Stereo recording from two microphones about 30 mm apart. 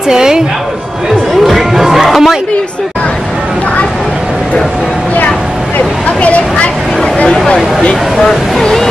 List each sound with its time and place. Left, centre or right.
0.1 s a woman's voice: right
1.5 s chatter: centre
8.2 s speech: centre